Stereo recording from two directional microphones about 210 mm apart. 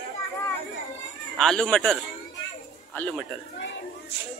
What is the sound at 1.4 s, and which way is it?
Speech, 5° left (ahead or behind).